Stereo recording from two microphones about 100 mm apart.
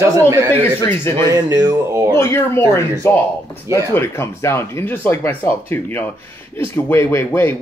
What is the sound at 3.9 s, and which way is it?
Speech, 25° left (ahead or behind).